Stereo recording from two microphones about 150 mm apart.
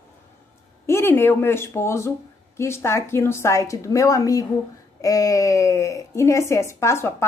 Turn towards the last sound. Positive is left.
turn(degrees=15)  # may be behind; listen again after turning